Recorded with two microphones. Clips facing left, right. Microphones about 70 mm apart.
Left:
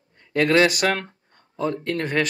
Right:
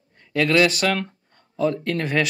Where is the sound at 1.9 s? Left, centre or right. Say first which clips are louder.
Right 1 dB; centre.